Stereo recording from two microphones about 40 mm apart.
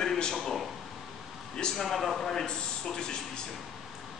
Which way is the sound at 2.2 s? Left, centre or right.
Centre.